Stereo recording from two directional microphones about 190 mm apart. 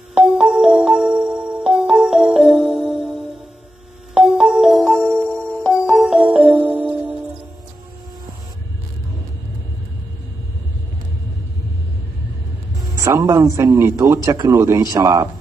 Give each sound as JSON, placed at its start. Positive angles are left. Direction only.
{"t": 0.1, "sound": "music", "side_deg": -5}
{"t": 12.7, "sound": "a man's voice", "side_deg": -15}